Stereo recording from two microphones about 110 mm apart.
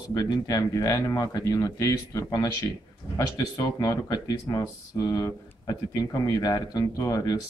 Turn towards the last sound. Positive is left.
turn(degrees=35)  # may be behind; listen again after turning